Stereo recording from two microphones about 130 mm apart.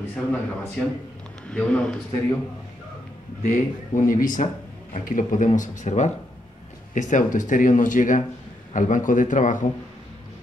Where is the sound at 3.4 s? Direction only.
85° left.